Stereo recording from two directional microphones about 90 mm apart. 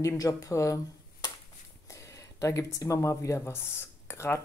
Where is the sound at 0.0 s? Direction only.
40° left (ahead or behind).